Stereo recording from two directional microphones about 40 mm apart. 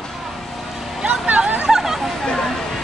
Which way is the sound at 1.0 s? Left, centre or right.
Right.